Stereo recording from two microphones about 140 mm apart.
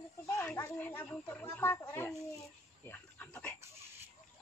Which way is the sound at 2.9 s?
10° left (ahead or behind).